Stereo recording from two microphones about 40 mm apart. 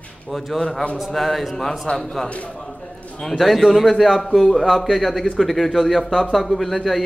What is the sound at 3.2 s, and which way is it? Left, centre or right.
A man's voice, centre.